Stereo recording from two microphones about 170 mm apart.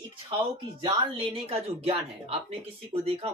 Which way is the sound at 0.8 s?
35° right (ahead or behind).